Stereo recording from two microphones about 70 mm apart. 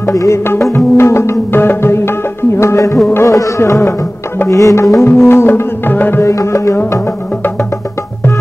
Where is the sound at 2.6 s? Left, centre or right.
Left.